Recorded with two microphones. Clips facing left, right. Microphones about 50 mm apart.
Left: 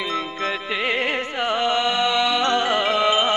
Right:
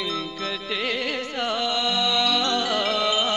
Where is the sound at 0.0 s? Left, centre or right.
Left.